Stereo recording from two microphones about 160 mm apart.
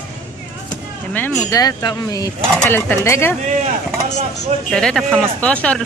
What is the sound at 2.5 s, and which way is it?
Speech, 10° left (ahead or behind).